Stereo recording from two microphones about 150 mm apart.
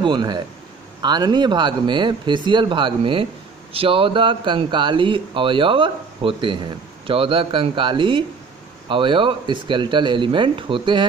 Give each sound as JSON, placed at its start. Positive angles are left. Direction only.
{"t": 0.0, "sound": "a man's voice", "side_deg": -30}